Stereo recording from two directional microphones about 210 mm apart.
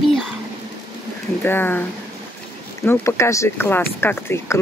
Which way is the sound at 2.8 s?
10° left (ahead or behind).